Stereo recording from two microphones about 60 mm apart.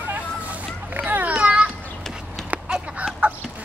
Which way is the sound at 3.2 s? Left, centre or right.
Right.